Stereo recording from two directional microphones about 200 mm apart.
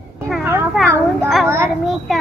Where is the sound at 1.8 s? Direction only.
Centre (ahead or behind).